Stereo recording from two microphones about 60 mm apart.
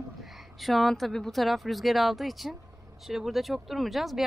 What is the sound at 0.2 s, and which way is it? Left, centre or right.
Speech, centre.